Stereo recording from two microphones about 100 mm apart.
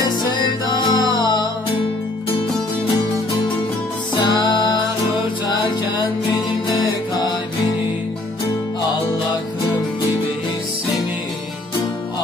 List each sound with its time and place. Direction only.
0.0 s music: 45° left (ahead or behind)
4.2 s music: 50° left (ahead or behind)
6.3 s music: 40° left (ahead or behind)